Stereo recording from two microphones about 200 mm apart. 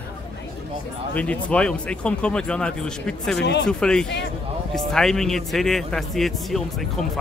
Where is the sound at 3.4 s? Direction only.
60° left (ahead or behind).